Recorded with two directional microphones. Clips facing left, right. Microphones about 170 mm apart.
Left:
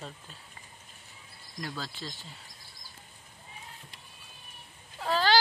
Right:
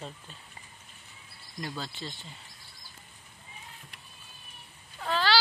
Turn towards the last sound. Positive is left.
turn(degrees=40)  # may be behind; listen again after turning